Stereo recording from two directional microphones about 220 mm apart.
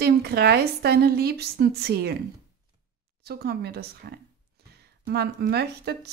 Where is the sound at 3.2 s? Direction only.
45° right (ahead or behind).